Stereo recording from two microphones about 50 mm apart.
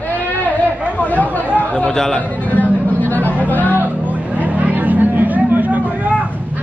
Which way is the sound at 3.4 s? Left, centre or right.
Left.